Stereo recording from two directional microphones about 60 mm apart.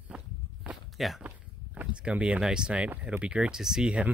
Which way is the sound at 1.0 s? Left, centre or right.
Centre.